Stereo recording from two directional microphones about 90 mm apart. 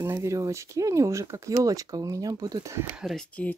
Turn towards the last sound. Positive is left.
turn(degrees=10)  # may be behind; listen again after turning